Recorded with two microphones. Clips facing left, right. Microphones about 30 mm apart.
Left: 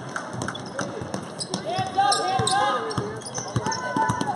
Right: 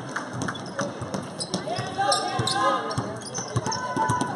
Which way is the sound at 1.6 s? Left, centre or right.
Centre.